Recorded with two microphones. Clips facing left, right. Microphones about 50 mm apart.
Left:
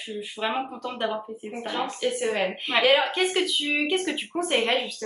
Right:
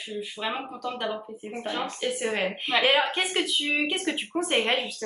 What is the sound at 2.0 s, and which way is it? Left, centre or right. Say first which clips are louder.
Speech: left 2 dB; centre.